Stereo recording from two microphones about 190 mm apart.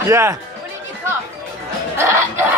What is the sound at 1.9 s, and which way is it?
Speech, 15° right (ahead or behind).